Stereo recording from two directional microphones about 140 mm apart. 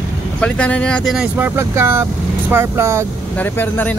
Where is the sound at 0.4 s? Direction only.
10° left (ahead or behind).